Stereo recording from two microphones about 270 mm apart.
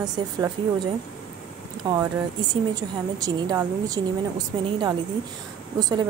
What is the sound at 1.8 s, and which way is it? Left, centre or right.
A woman's voice, centre.